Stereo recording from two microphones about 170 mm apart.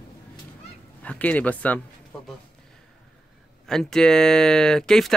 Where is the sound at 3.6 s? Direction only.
5° left (ahead or behind).